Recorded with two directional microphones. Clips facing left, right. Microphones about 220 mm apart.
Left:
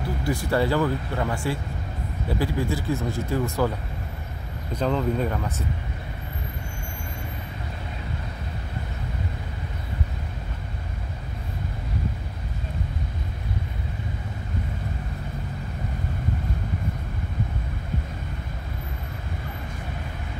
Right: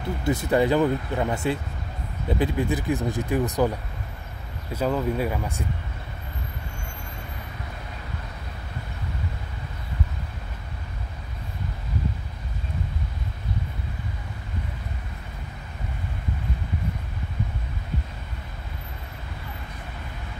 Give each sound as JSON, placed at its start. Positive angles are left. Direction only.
{"t": 0.2, "sound": "speech", "side_deg": -20}
{"t": 4.7, "sound": "speech", "side_deg": -10}